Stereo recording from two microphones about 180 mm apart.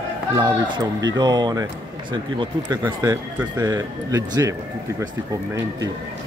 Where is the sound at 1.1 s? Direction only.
25° right (ahead or behind).